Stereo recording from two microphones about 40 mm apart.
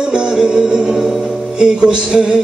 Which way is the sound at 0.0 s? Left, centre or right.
Centre.